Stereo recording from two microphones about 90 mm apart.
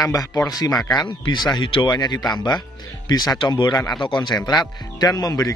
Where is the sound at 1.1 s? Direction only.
55° left (ahead or behind).